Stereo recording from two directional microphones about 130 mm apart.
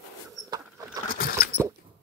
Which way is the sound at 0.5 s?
30° right (ahead or behind).